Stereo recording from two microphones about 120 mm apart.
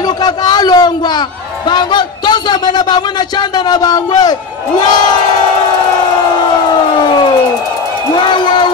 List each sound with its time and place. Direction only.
0.2 s a man's voice: 35° left (ahead or behind)
8.1 s a man's voice: 40° left (ahead or behind)